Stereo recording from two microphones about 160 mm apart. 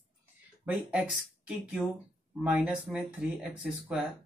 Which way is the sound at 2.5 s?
10° right (ahead or behind).